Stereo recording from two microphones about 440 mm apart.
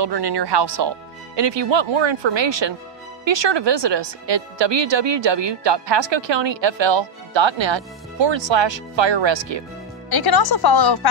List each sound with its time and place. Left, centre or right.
0.0 s speech: right
10.0 s speech: left